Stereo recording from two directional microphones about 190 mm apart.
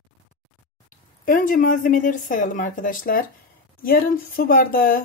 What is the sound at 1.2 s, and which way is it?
Speech, 45° left (ahead or behind).